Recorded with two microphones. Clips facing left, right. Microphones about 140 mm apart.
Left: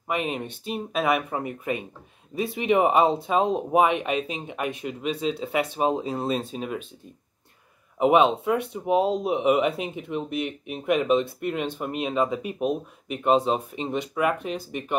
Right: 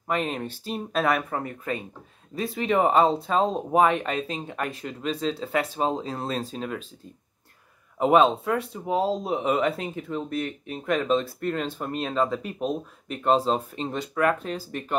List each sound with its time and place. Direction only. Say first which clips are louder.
0.1 s speech: even; 10° left (ahead or behind)
3.2 s speech: left 1 dB; 5° left (ahead or behind)
8.0 s speech: even; 5° left (ahead or behind)
10.1 s speech: left 1 dB; 15° left (ahead or behind)